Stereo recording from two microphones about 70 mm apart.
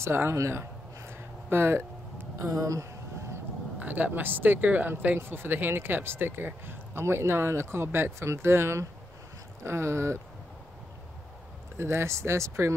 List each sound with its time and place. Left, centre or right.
0.0 s a sound: right
3.8 s speech: right
11.7 s speech: right